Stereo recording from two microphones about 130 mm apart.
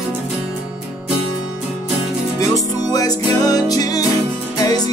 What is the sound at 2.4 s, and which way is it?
Music, 25° left (ahead or behind).